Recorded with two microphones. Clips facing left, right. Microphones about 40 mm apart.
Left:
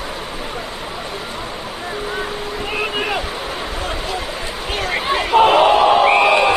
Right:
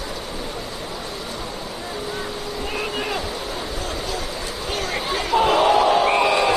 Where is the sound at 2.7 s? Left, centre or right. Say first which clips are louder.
Left 5 dB; left.